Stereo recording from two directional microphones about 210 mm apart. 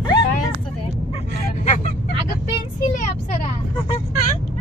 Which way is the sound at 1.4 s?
35° left (ahead or behind).